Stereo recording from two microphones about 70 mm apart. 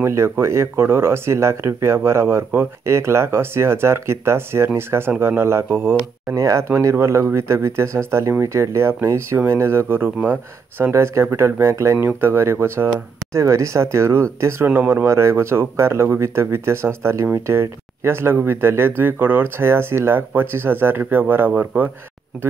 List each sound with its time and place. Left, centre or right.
0.0 s speech: right
6.4 s speech: right
10.9 s speech: right
14.4 s speech: right
15.0 s speech: right